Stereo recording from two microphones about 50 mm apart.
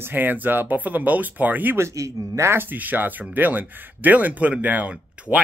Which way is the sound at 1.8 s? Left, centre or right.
Right.